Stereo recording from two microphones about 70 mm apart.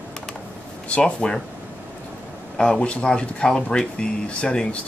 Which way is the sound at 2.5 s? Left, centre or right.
Centre.